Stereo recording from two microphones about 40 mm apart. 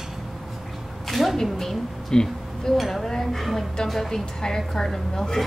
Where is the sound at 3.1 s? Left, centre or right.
Centre.